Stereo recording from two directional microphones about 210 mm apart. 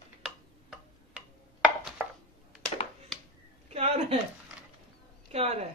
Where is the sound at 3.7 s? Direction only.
30° right (ahead or behind).